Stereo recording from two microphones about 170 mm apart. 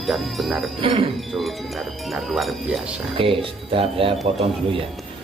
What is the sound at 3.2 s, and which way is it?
Speech, 30° right (ahead or behind).